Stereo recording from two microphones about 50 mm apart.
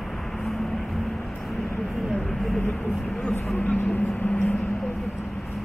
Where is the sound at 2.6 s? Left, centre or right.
Left.